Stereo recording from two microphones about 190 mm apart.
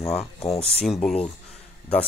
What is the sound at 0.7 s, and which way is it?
Speech, centre (ahead or behind).